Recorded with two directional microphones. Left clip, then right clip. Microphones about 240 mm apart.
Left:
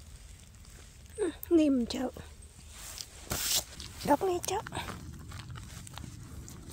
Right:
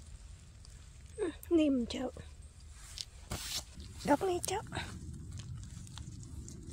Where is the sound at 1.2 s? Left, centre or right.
Centre.